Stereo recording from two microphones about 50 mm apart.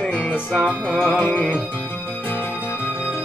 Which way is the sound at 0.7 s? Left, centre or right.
Centre.